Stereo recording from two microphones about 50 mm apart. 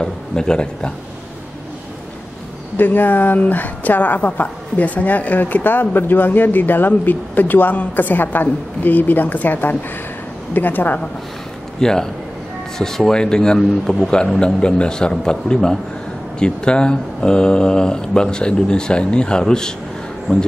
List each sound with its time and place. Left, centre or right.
0.0 s speech: centre
2.8 s a woman's voice: left
11.8 s speech: centre